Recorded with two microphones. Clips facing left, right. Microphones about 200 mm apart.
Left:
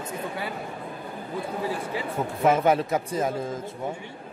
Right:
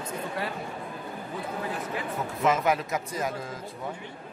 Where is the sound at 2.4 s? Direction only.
30° left (ahead or behind).